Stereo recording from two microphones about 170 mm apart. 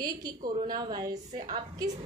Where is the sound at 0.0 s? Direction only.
20° right (ahead or behind).